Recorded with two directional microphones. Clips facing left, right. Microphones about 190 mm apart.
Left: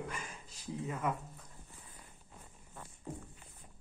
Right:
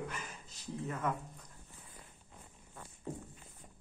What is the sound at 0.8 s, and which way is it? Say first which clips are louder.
Speech: even; 10° left (ahead or behind).